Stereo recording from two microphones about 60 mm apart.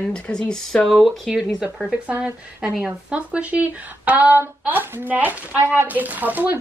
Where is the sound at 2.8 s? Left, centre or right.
Right.